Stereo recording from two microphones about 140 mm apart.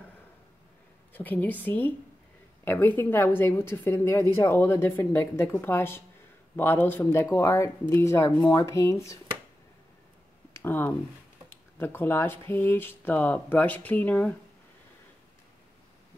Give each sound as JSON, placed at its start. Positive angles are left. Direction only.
{"t": 1.1, "sound": "a woman's voice", "side_deg": 10}
{"t": 10.6, "sound": "a woman's voice", "side_deg": 15}